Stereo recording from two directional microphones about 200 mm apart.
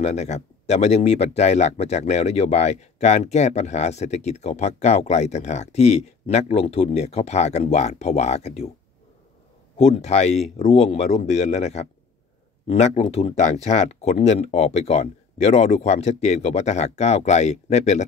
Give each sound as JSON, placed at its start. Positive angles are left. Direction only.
{"t": 0.0, "sound": "speech", "side_deg": 35}
{"t": 9.8, "sound": "speech", "side_deg": 30}